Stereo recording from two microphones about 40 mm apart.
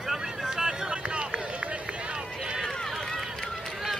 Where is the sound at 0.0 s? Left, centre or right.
Centre.